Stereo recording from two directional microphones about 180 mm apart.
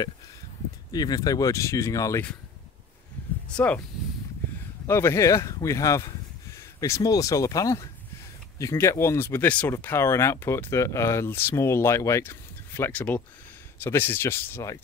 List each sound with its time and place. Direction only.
0.9 s speech: 20° left (ahead or behind)
3.5 s speech: 10° left (ahead or behind)
4.8 s speech: 15° left (ahead or behind)